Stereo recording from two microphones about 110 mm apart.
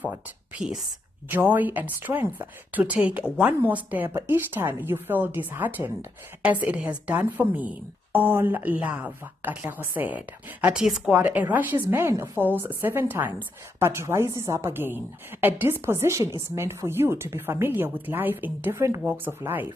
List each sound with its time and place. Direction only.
0.0 s a woman's voice: 15° right (ahead or behind)